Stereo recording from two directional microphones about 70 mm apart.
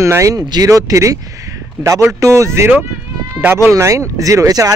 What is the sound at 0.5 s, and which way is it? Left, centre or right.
Speech, right.